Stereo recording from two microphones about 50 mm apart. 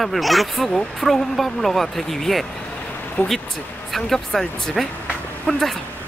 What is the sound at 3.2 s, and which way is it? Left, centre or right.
Speech, left.